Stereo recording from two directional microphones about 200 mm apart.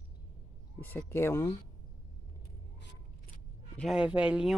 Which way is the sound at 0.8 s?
10° left (ahead or behind).